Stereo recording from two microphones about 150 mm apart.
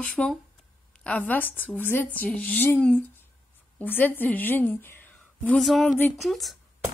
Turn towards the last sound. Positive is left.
turn(degrees=0)  # may be behind; listen again after turning